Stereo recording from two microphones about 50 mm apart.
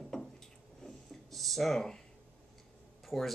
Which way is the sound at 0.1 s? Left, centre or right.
Centre.